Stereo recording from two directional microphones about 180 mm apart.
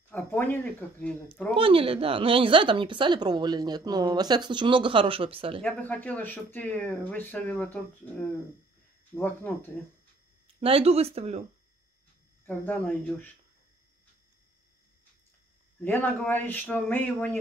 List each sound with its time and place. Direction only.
0.1 s speech: 10° left (ahead or behind)
1.5 s speech: 30° right (ahead or behind)
5.6 s speech: 5° left (ahead or behind)
9.1 s speech: 10° left (ahead or behind)
10.6 s speech: 35° right (ahead or behind)
12.4 s speech: 10° left (ahead or behind)
15.8 s speech: 10° left (ahead or behind)